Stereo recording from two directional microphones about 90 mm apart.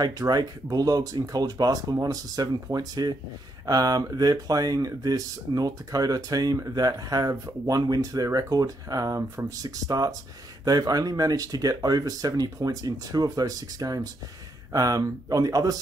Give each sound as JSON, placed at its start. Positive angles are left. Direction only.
{"t": 0.0, "sound": "speech", "side_deg": -45}